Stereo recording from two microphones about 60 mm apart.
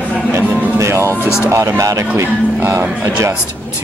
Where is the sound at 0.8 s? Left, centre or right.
Right.